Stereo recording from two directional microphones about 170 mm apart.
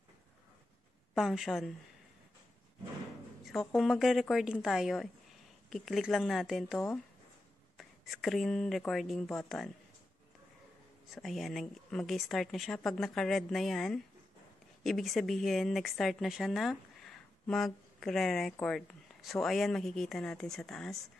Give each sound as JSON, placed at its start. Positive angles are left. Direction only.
{"t": 1.1, "sound": "speech", "side_deg": 0}
{"t": 3.4, "sound": "speech", "side_deg": 0}
{"t": 11.1, "sound": "speech", "side_deg": 0}